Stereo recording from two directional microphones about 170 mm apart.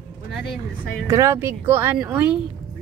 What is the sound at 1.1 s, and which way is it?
A woman's voice, 15° right (ahead or behind).